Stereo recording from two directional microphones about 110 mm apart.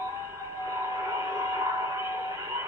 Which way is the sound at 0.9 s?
25° right (ahead or behind).